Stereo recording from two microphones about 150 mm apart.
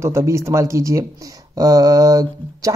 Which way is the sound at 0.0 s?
20° right (ahead or behind).